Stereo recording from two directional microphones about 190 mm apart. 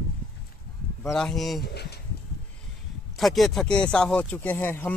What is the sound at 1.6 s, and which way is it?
Speech, 60° left (ahead or behind).